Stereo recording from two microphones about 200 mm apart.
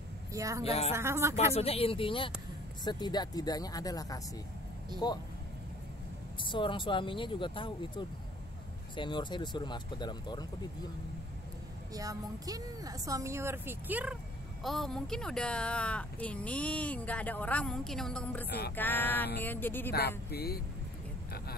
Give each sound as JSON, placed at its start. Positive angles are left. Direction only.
{"t": 0.3, "sound": "a woman's voice", "side_deg": -15}
{"t": 1.5, "sound": "speech", "side_deg": 30}
{"t": 6.4, "sound": "speech", "side_deg": 25}
{"t": 11.9, "sound": "a woman's voice", "side_deg": -15}
{"t": 19.9, "sound": "speech", "side_deg": 55}